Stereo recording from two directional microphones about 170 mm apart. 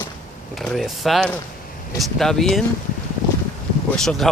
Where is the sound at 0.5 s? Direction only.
Centre (ahead or behind).